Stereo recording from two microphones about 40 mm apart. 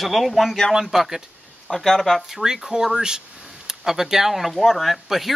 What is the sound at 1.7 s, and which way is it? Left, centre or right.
Speech, centre.